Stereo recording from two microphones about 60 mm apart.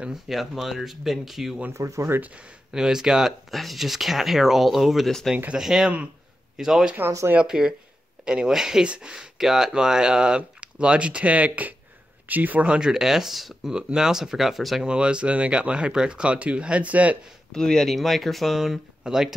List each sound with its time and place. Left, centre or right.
0.1 s speech: centre
1.7 s speech: right
2.7 s speech: centre; by 12.7 s right
12.7 s speech: centre
14.9 s speech: centre
17.5 s speech: centre